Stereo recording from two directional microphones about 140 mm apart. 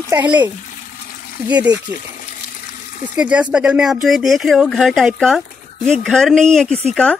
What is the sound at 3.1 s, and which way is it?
A woman's voice, 10° right (ahead or behind).